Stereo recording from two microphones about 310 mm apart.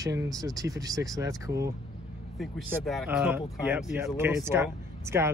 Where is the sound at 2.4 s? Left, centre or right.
Centre.